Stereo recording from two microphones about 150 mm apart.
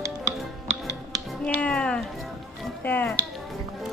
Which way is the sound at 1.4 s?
10° left (ahead or behind).